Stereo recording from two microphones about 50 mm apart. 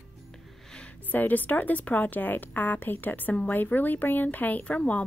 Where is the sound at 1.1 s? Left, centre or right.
Left.